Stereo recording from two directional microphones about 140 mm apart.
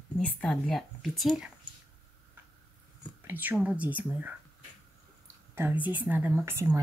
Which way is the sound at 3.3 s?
15° right (ahead or behind).